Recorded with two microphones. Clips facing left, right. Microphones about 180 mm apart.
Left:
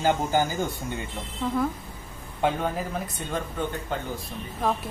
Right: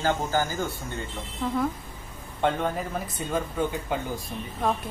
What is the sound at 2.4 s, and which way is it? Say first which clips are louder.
Speech: even; 5° left (ahead or behind).